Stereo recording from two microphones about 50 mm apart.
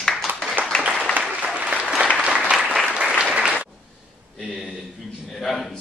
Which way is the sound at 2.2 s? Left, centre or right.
Centre.